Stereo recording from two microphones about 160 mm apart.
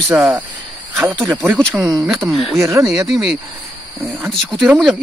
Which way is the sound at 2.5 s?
20° right (ahead or behind).